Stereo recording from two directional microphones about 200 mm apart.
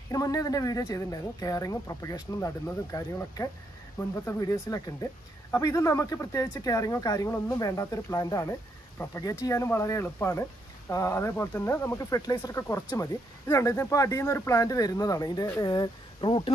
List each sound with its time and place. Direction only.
0.1 s speech: 15° left (ahead or behind)